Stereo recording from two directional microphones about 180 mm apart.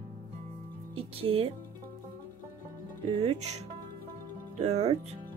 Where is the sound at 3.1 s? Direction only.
35° right (ahead or behind).